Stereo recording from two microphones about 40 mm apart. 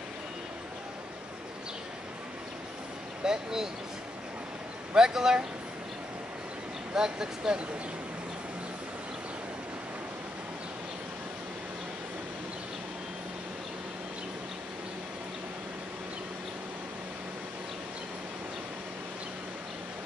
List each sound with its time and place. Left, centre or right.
3.3 s speech: centre
4.9 s speech: centre
6.9 s speech: centre